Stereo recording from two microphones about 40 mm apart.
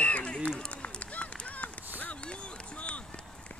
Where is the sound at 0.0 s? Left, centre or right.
Left.